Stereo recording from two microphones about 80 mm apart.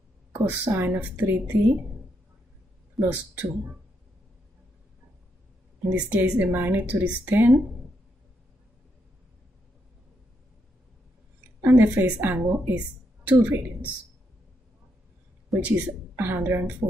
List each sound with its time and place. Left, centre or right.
0.3 s a woman's voice: right
3.0 s a woman's voice: right
5.9 s a woman's voice: right
11.6 s a woman's voice: right
15.6 s a woman's voice: right